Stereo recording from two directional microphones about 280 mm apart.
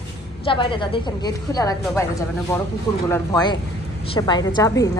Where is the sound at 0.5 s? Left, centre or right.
Centre.